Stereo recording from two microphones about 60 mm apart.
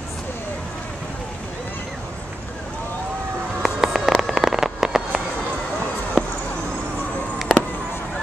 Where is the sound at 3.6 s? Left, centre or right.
Centre.